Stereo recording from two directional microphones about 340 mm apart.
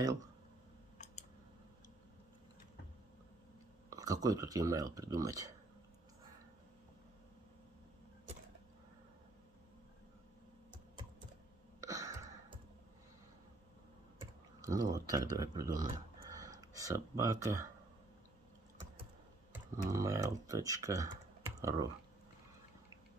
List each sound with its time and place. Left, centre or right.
0.0 s speech: centre
0.9 s a sound: centre
3.9 s speech: centre
11.8 s a sound: centre
14.2 s speech: centre
19.5 s speech: centre